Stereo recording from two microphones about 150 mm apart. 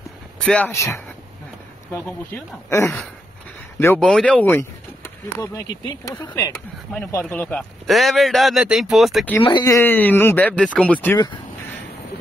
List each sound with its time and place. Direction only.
0.4 s speech: 5° left (ahead or behind)
0.7 s speech: 20° left (ahead or behind)
4.0 s speech: 5° left (ahead or behind)
7.8 s speech: centre (ahead or behind)
9.4 s speech: 30° left (ahead or behind)
9.8 s speech: 15° left (ahead or behind)